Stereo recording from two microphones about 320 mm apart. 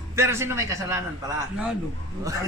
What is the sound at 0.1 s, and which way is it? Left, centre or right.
Speech, centre.